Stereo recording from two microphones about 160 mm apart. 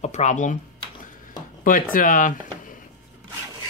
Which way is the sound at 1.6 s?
55° left (ahead or behind).